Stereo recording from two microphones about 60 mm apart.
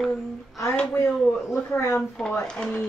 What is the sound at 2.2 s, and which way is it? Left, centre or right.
Speech, centre.